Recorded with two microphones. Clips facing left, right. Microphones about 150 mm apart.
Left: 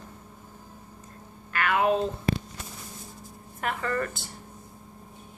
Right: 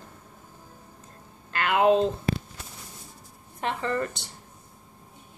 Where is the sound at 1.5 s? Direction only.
25° right (ahead or behind).